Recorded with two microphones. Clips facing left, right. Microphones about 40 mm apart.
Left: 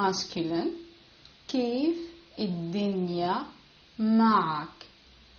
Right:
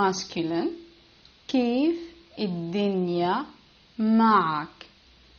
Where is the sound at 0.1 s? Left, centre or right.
Right.